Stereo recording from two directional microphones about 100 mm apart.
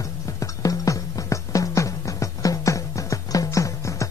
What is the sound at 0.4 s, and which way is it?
Music, 35° left (ahead or behind).